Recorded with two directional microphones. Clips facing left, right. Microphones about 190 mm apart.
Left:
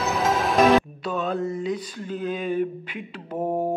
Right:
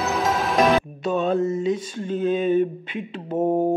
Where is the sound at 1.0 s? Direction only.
25° right (ahead or behind).